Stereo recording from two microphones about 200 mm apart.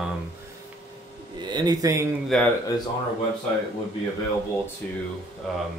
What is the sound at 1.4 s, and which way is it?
Speech, 20° right (ahead or behind).